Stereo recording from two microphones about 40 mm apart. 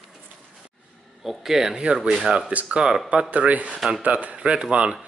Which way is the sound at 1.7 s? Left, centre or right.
Right.